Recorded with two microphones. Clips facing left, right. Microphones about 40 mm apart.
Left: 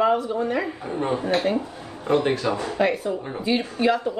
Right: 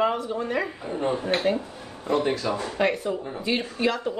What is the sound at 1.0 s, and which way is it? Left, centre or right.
A man's voice, left.